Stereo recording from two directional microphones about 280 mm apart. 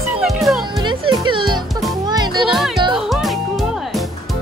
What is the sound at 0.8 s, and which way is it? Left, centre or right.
Music, centre.